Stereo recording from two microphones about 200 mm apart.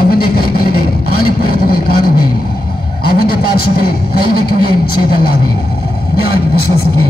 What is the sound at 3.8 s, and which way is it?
Vehicle, 50° left (ahead or behind).